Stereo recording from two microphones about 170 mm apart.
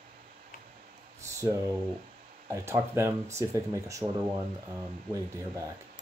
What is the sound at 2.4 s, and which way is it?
Speech, 15° right (ahead or behind).